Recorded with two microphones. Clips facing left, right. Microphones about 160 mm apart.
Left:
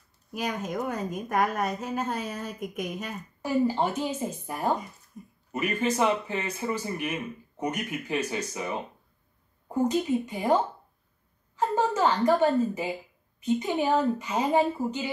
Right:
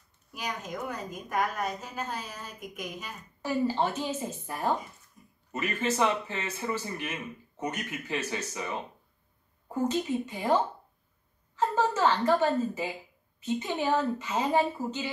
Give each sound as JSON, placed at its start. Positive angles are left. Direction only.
{"t": 0.3, "sound": "a woman's voice", "side_deg": 55}
{"t": 3.4, "sound": "a man's voice", "side_deg": 15}
{"t": 5.2, "sound": "speech", "side_deg": 50}
{"t": 5.5, "sound": "a man's voice", "side_deg": 10}